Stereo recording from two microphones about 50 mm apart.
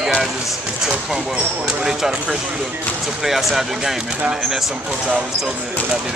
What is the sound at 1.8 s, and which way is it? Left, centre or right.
A man's voice, centre.